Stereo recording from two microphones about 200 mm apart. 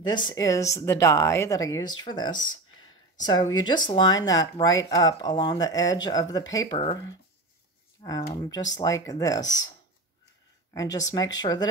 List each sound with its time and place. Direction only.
0.0 s speech: 20° left (ahead or behind)
8.0 s speech: 20° left (ahead or behind)